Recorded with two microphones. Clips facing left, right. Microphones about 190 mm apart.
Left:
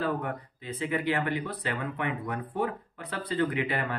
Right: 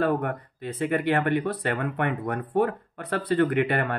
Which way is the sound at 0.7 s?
55° right (ahead or behind).